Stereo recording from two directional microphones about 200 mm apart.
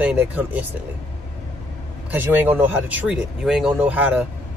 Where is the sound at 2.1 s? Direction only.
10° right (ahead or behind).